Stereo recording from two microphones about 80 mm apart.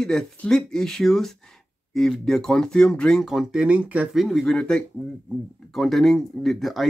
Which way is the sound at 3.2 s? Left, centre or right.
Centre.